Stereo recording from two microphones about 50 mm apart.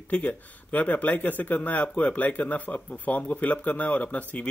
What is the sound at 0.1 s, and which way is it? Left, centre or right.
Speech, left.